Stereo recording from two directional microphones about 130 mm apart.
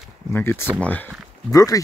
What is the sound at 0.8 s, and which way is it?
Speech, 15° left (ahead or behind).